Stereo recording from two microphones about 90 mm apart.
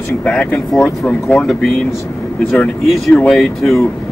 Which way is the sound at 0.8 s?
15° left (ahead or behind).